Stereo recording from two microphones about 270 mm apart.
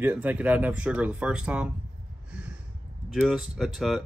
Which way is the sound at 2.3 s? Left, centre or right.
Centre.